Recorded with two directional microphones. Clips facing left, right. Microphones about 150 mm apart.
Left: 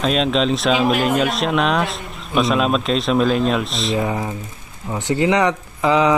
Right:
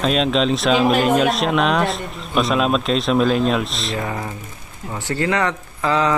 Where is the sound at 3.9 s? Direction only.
20° left (ahead or behind).